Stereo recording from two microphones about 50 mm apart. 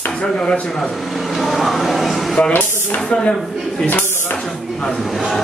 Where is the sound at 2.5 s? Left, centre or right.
Left.